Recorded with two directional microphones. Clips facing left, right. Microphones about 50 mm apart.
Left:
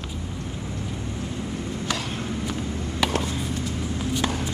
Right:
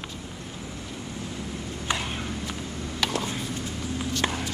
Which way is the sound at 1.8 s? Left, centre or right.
Right.